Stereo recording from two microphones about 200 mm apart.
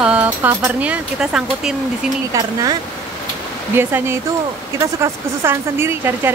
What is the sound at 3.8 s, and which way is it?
Speech, 10° right (ahead or behind).